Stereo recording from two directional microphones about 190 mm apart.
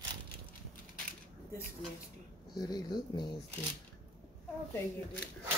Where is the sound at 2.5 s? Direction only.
20° left (ahead or behind).